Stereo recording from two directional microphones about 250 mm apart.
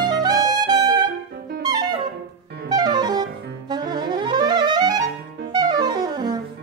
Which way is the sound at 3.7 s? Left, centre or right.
Centre.